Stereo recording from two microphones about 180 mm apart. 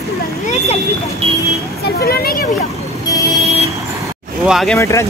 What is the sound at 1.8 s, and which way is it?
Speech, 60° left (ahead or behind).